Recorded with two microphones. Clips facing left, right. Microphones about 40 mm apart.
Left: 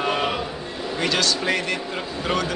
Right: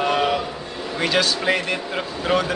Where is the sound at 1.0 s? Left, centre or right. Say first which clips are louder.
Right 3 dB; centre.